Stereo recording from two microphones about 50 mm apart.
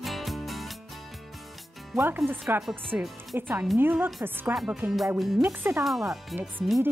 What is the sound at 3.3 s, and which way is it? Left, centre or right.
Speech, right.